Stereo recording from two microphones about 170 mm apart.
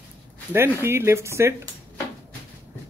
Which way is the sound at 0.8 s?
15° right (ahead or behind).